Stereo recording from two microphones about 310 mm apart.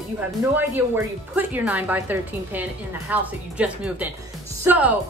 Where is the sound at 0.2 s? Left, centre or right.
Centre.